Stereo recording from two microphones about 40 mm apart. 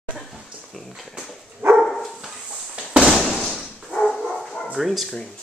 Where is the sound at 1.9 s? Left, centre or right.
Centre.